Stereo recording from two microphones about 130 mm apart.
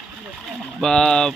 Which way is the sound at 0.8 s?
5° left (ahead or behind).